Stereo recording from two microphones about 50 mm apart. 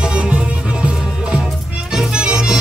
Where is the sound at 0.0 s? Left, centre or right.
Right.